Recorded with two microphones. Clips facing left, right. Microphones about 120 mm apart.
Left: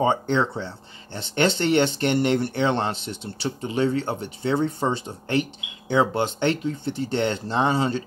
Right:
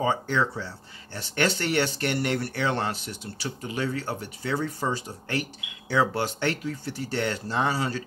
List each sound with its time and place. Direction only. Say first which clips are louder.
0.0 s speech: left 4 dB; 25° left (ahead or behind)